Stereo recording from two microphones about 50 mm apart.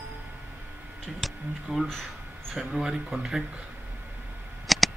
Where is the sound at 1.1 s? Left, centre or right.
Centre.